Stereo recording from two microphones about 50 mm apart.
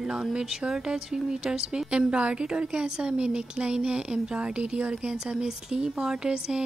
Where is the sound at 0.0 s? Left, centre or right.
Centre.